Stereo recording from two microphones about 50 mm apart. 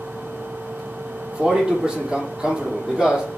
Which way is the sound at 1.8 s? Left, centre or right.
Centre.